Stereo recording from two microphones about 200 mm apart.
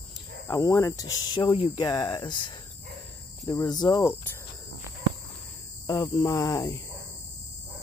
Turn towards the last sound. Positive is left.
turn(degrees=15)  # may be behind; listen again after turning